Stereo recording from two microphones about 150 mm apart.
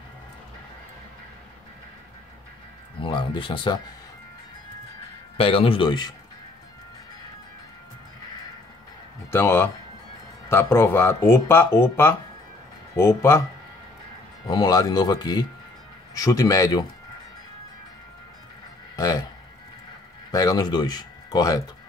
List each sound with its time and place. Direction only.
3.0 s speech: 35° left (ahead or behind)
5.4 s speech: 40° left (ahead or behind)
9.3 s speech: 15° left (ahead or behind)
14.5 s speech: 25° left (ahead or behind)
20.2 s speech: 25° left (ahead or behind)